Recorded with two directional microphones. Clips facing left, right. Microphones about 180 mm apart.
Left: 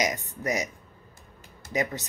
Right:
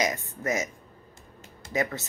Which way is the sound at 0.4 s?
20° left (ahead or behind).